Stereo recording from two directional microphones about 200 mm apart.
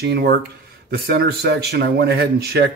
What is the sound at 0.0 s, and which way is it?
Speech, 55° right (ahead or behind).